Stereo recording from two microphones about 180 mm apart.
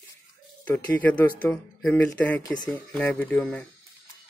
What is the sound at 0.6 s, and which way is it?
Speech, 10° left (ahead or behind).